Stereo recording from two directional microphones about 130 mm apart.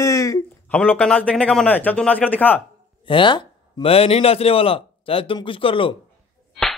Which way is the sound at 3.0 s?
40° left (ahead or behind).